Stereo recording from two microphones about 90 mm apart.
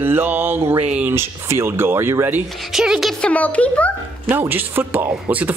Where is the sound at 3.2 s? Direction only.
15° left (ahead or behind).